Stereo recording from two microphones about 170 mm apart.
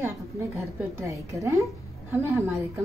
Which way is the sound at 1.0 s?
20° right (ahead or behind).